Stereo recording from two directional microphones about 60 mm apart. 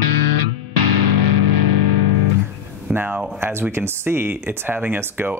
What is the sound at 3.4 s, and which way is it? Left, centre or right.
Speech, right.